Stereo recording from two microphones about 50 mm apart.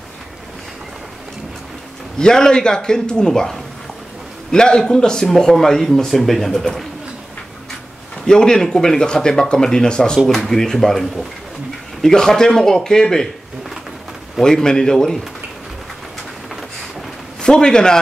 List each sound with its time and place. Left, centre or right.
2.1 s speech: centre
8.3 s speech: centre
14.4 s speech: centre
17.4 s a man's voice: centre